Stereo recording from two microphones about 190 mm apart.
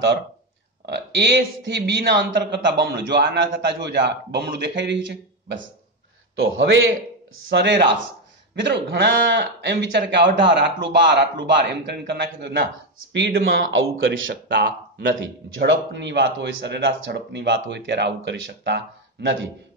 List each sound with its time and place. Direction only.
0.8 s speech: 65° right (ahead or behind)
6.3 s a man's voice: 90° right
7.4 s a man's voice: 65° right (ahead or behind)
13.9 s speech: 90° right; by 18.8 s 60° right (ahead or behind)